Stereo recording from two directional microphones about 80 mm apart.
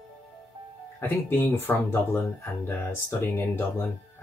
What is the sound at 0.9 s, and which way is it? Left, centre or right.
Speech, left.